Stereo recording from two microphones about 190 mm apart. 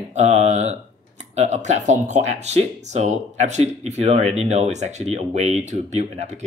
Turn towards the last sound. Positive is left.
turn(degrees=-35)  # may be behind; listen again after turning